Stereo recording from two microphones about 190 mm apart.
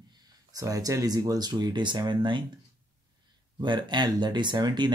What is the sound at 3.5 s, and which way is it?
Speech, 25° right (ahead or behind).